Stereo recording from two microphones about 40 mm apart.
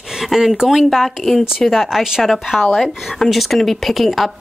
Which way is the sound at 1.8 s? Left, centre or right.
Centre.